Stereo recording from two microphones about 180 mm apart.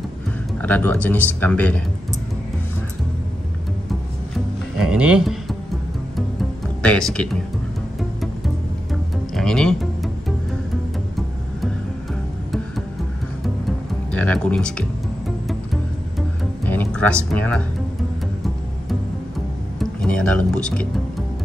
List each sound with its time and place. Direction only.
0.6 s a man's voice: 10° left (ahead or behind)
4.7 s speech: 5° right (ahead or behind)
6.8 s speech: 5° left (ahead or behind)
9.3 s music: 5° left (ahead or behind)
14.1 s music: 5° left (ahead or behind)
17.3 s speech: 5° left (ahead or behind)
19.8 s speech: 5° left (ahead or behind)